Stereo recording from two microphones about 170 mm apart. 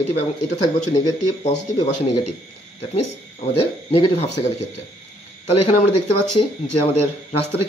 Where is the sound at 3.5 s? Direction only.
35° left (ahead or behind).